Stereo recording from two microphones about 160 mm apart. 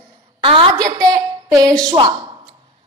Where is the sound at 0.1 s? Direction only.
30° right (ahead or behind).